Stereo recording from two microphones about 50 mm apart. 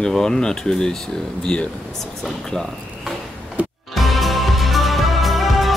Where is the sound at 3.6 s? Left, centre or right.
Right.